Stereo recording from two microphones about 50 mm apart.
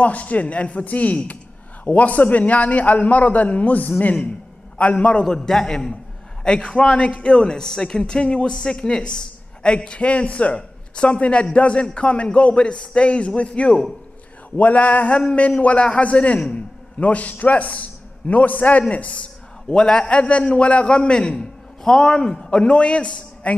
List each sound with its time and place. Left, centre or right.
0.0 s a man's voice: left
5.2 s a man's voice: centre